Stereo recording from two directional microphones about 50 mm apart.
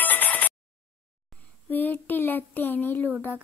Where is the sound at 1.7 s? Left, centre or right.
Left.